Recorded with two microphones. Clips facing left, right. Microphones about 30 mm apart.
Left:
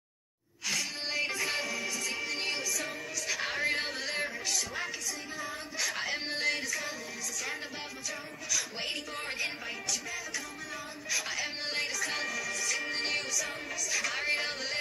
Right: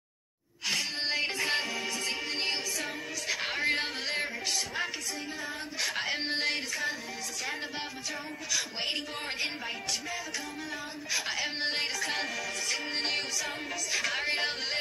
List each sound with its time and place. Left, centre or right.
0.7 s music: right
2.8 s music: centre
8.5 s music: right
12.6 s music: right